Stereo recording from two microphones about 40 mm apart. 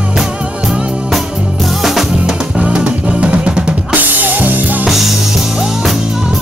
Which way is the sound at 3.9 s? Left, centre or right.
Right.